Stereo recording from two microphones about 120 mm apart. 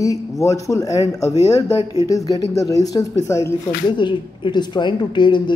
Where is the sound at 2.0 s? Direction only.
30° left (ahead or behind).